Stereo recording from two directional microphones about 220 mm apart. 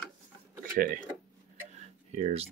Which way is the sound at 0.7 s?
40° right (ahead or behind).